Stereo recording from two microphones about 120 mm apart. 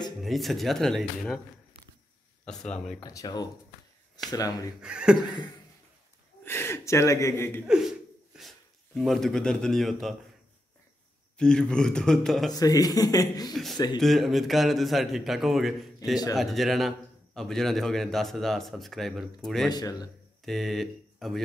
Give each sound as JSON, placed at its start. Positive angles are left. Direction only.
{"t": 0.2, "sound": "a man's voice", "side_deg": 0}
{"t": 2.4, "sound": "speech", "side_deg": 5}
{"t": 3.0, "sound": "speech", "side_deg": 30}
{"t": 4.8, "sound": "speech", "side_deg": -5}
{"t": 6.4, "sound": "speech", "side_deg": 20}
{"t": 7.6, "sound": "a man's voice", "side_deg": -5}
{"t": 11.3, "sound": "a man's voice", "side_deg": 5}
{"t": 12.5, "sound": "speech", "side_deg": 30}
{"t": 13.5, "sound": "a man's voice", "side_deg": 0}
{"t": 19.7, "sound": "speech", "side_deg": 35}
{"t": 20.4, "sound": "speech", "side_deg": 0}